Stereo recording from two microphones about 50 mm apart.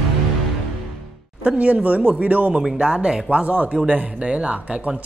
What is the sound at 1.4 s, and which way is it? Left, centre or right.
A man's voice, right.